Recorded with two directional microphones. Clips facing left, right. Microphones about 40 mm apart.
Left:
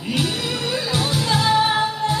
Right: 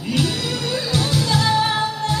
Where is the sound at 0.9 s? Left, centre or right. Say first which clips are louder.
Right 1 dB; left.